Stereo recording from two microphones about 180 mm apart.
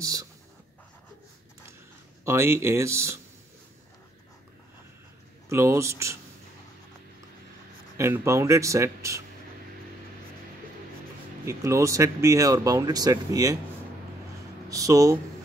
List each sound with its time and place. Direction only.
0.0 s speech: 20° right (ahead or behind)
2.2 s speech: 15° right (ahead or behind)
5.5 s speech: 15° right (ahead or behind)
8.0 s speech: 15° right (ahead or behind)
11.4 s speech: 15° right (ahead or behind)
14.7 s speech: 20° right (ahead or behind)